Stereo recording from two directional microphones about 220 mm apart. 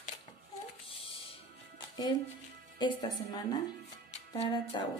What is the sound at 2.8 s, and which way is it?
Speech, 20° left (ahead or behind).